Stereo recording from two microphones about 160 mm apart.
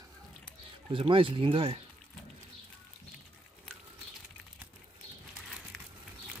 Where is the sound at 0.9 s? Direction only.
35° right (ahead or behind).